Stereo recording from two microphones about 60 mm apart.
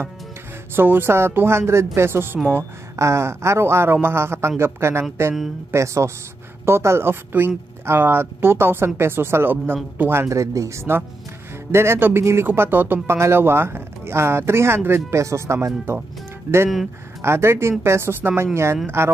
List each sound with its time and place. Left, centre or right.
0.7 s speech: right
3.0 s speech: right
10.3 s speech: right